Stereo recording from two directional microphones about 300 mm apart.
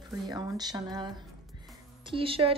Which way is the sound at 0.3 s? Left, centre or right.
Centre.